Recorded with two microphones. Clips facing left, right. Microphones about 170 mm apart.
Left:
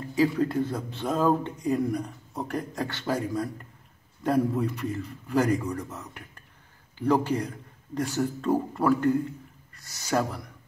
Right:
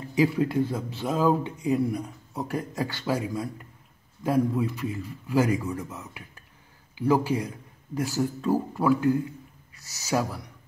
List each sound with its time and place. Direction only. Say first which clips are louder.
0.1 s a man's voice: right 1 dB; 15° right (ahead or behind)